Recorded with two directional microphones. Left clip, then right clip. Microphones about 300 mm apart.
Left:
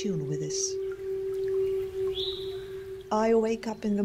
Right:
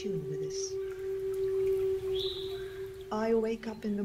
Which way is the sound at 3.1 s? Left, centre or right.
Left.